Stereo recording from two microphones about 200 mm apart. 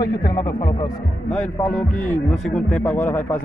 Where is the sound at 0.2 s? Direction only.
20° left (ahead or behind).